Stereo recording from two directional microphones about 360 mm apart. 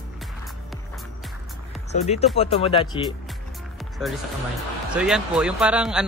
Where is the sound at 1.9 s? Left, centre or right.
Centre.